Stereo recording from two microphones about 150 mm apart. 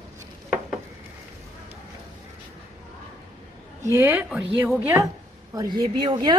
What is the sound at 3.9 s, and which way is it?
Speech, 10° right (ahead or behind).